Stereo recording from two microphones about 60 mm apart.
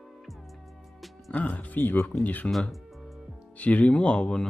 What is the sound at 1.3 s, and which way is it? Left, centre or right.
Speech, left.